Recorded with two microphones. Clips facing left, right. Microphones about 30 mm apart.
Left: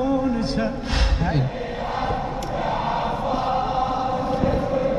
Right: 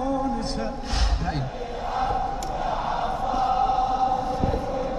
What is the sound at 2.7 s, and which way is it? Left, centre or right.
Chant, left.